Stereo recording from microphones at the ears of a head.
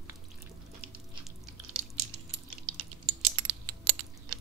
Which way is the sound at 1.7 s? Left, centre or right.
Right.